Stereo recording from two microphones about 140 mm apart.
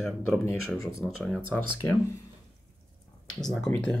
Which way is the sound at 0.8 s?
20° left (ahead or behind).